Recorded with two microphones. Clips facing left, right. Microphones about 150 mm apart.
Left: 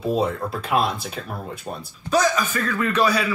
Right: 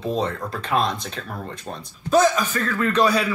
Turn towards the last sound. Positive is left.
turn(degrees=5)  # may be behind; listen again after turning